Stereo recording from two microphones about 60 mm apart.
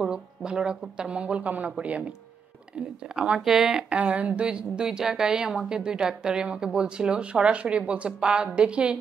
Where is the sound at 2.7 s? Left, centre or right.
Centre.